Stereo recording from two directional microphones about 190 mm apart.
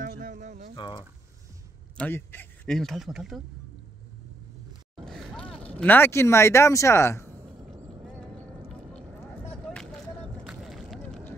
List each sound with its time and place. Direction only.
0.0 s a sound: 45° right (ahead or behind)
0.7 s speech: 25° left (ahead or behind)
2.0 s speech: 10° left (ahead or behind)
5.0 s speech: centre (ahead or behind)
8.6 s vehicle: centre (ahead or behind)
10.4 s a sound: 5° right (ahead or behind)